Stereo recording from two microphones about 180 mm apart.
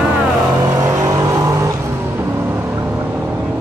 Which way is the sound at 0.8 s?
15° right (ahead or behind).